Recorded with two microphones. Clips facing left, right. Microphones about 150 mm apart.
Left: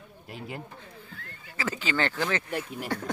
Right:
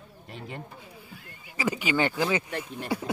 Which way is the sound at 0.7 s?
10° right (ahead or behind).